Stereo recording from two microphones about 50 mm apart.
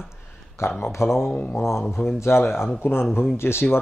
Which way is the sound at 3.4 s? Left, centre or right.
Left.